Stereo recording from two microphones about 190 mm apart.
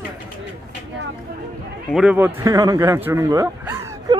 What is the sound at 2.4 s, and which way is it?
Speech, 20° right (ahead or behind).